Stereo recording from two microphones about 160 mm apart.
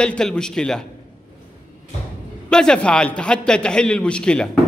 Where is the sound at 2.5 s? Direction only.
5° left (ahead or behind).